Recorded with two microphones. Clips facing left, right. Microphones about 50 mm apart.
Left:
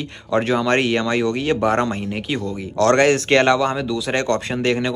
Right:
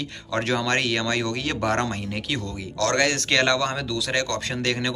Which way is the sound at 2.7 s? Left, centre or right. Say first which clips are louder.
Left 7 dB; left.